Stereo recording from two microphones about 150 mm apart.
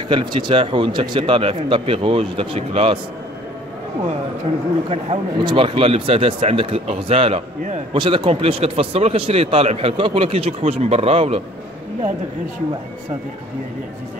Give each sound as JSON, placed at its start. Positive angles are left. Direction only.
{"t": 0.1, "sound": "speech", "side_deg": -30}
{"t": 4.8, "sound": "a man's voice", "side_deg": -40}